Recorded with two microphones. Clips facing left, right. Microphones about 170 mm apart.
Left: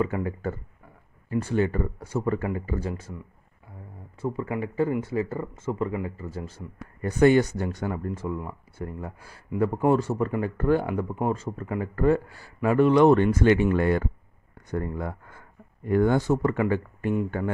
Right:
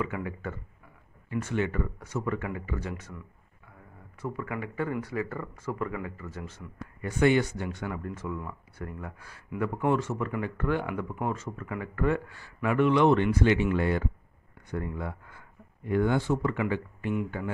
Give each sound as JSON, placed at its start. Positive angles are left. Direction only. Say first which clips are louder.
{"t": 0.0, "sound": "speech", "louder": "left 6 dB", "side_deg": 35}
{"t": 4.2, "sound": "speech", "louder": "left 5 dB", "side_deg": 30}